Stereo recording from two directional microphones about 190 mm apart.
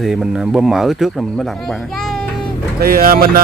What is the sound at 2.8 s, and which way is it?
Speech, 50° right (ahead or behind).